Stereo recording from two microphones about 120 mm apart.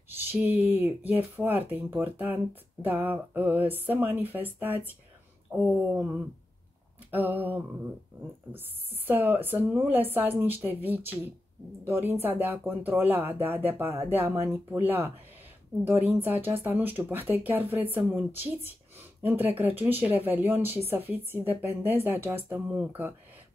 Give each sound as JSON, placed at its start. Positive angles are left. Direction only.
{"t": 0.3, "sound": "a woman's voice", "side_deg": -15}
{"t": 5.5, "sound": "a sound", "side_deg": -10}
{"t": 5.9, "sound": "a woman's voice", "side_deg": -15}